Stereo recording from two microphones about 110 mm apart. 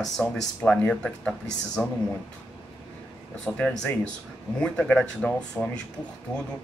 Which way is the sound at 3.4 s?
10° left (ahead or behind).